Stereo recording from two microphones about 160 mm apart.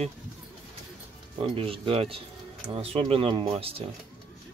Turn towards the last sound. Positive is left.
turn(degrees=-35)  # may be behind; listen again after turning